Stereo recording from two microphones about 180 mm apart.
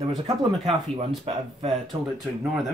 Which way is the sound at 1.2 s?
35° right (ahead or behind).